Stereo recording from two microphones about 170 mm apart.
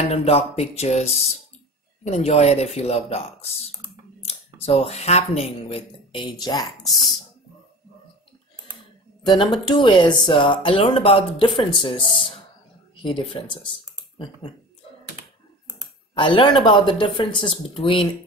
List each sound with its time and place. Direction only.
0.1 s speech: 35° left (ahead or behind)
6.2 s speech: 20° left (ahead or behind)
9.4 s speech: 30° left (ahead or behind)
16.2 s speech: 30° left (ahead or behind)